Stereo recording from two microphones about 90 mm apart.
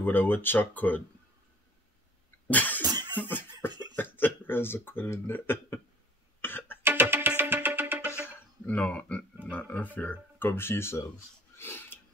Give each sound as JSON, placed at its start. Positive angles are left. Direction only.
{"t": 0.0, "sound": "speech", "side_deg": 20}
{"t": 2.4, "sound": "cough", "side_deg": 20}
{"t": 3.9, "sound": "speech", "side_deg": 20}
{"t": 6.4, "sound": "cough", "side_deg": 25}
{"t": 6.8, "sound": "music", "side_deg": -25}
{"t": 8.6, "sound": "speech", "side_deg": 15}
{"t": 11.5, "sound": "a sound", "side_deg": 25}